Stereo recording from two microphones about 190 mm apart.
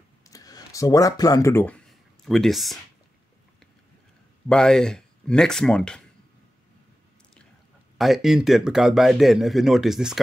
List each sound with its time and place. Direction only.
0.3 s speech: 20° left (ahead or behind); by 2.8 s centre (ahead or behind)
4.5 s a man's voice: 5° left (ahead or behind)
8.0 s a man's voice: centre (ahead or behind)